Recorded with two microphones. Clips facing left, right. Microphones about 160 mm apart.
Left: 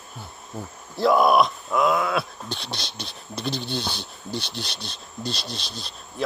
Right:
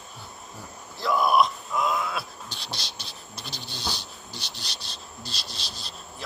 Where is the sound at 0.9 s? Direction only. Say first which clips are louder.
Left 5 dB; 60° left (ahead or behind); by 2.6 s 90° left.